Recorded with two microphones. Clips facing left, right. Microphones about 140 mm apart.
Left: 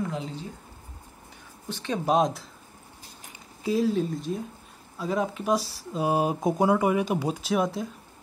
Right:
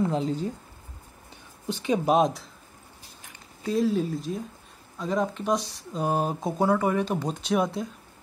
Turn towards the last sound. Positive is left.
turn(degrees=0)  # may be behind; listen again after turning